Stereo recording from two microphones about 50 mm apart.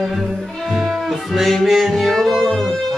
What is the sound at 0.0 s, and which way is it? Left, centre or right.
Music, centre.